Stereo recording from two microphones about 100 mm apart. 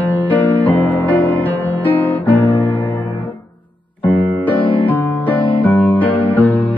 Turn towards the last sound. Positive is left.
turn(degrees=15)  # may be behind; listen again after turning